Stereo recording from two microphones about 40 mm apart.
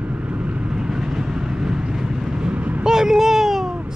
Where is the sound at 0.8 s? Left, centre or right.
Centre.